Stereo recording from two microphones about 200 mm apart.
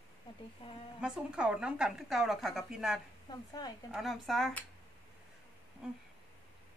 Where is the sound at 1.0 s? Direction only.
5° right (ahead or behind).